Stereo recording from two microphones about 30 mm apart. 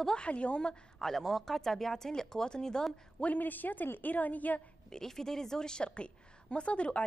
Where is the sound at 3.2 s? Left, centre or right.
Left.